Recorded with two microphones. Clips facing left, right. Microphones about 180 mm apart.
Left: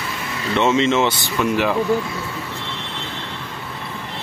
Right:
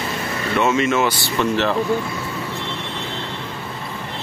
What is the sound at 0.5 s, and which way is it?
Speech, 25° left (ahead or behind).